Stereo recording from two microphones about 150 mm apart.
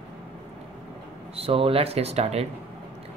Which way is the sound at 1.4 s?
40° right (ahead or behind).